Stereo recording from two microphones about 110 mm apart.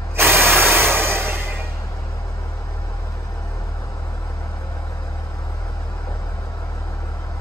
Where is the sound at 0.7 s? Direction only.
20° right (ahead or behind).